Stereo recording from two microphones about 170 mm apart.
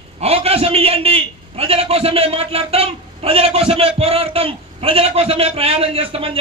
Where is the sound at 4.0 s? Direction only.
35° right (ahead or behind).